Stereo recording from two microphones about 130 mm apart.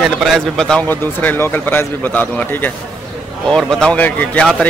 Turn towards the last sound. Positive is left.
turn(degrees=10)  # may be behind; listen again after turning